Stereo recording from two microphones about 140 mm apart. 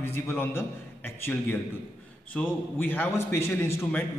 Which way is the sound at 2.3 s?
10° left (ahead or behind).